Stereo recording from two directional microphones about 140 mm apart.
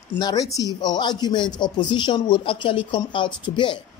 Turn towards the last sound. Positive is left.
turn(degrees=35)  # may be behind; listen again after turning